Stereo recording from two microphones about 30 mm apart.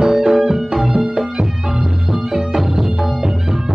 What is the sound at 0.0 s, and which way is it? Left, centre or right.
Music, centre.